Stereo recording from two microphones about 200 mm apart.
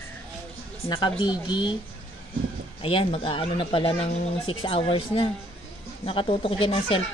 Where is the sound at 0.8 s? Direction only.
25° left (ahead or behind).